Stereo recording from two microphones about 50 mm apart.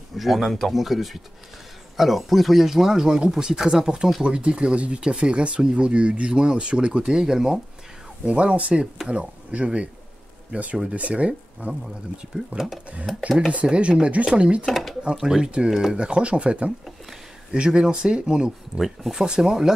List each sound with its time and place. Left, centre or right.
0.2 s speech: centre
8.3 s speech: right
12.4 s speech: centre
13.5 s speech: right
14.7 s speech: centre
15.1 s speech: centre
16.0 s speech: right